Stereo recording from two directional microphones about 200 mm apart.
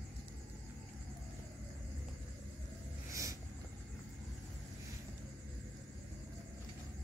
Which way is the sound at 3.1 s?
15° right (ahead or behind).